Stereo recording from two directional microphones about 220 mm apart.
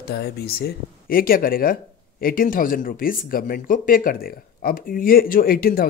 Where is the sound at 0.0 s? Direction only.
45° left (ahead or behind).